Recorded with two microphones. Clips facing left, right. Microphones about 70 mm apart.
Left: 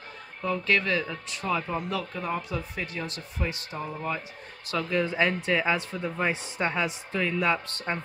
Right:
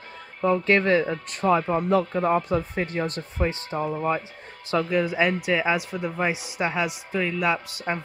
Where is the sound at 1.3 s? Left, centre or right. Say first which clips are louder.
Right 8 dB; right.